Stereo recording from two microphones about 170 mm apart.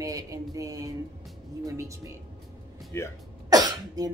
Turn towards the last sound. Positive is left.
turn(degrees=-20)  # may be behind; listen again after turning